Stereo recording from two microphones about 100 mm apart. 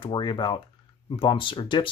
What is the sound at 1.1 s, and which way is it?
Speech, 60° left (ahead or behind).